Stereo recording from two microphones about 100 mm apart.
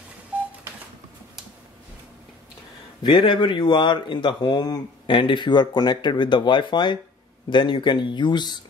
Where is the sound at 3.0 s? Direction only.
55° left (ahead or behind).